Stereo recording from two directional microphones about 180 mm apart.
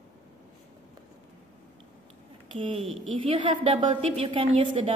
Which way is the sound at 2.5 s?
35° right (ahead or behind).